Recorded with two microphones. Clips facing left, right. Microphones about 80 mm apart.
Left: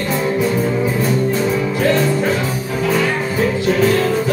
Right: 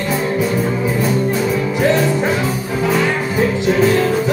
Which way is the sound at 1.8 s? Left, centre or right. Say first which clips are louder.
Right 1 dB; centre.